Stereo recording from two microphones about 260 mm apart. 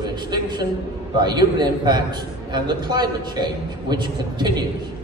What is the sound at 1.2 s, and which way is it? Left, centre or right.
A man's voice, centre.